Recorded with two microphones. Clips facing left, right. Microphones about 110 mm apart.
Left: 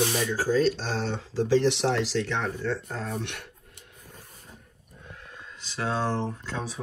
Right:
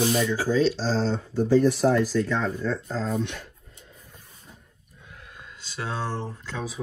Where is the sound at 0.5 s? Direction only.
50° left (ahead or behind).